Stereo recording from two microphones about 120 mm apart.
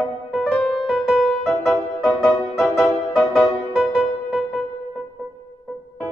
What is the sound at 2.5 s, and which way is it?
Music, 20° left (ahead or behind).